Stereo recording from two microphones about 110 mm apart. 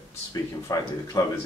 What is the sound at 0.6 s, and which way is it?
Speech, 30° left (ahead or behind).